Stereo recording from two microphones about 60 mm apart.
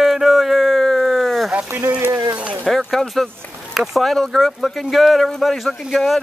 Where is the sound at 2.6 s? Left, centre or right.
Centre.